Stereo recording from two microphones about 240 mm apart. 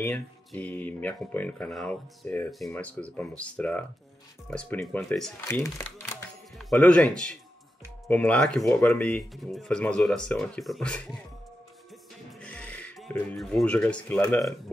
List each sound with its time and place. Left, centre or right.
0.0 s speech: centre
12.3 s speech: centre